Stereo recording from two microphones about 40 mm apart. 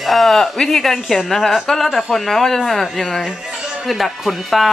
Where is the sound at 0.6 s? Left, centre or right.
Centre.